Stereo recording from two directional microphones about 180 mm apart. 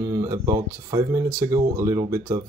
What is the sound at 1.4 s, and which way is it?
Speech, 20° right (ahead or behind).